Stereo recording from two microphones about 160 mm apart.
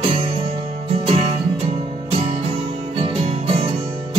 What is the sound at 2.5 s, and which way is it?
Music, 35° right (ahead or behind).